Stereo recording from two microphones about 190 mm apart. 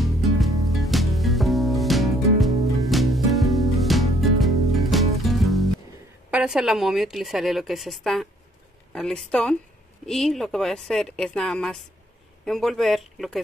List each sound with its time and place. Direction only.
0.0 s music: centre (ahead or behind)
6.3 s a woman's voice: 5° right (ahead or behind)